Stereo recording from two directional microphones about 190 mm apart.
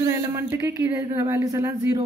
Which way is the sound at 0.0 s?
15° right (ahead or behind).